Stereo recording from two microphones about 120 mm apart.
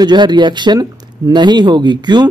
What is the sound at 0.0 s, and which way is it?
Speech, 40° right (ahead or behind).